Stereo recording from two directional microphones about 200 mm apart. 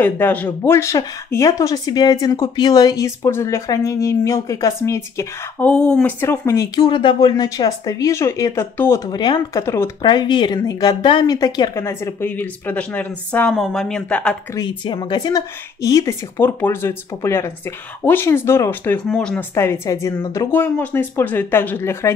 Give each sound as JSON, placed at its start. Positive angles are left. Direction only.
{"t": 0.0, "sound": "speech", "side_deg": 10}
{"t": 14.6, "sound": "speech", "side_deg": 20}